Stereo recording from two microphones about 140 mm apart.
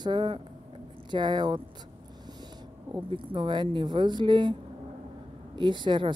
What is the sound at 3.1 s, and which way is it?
Speech, 35° right (ahead or behind).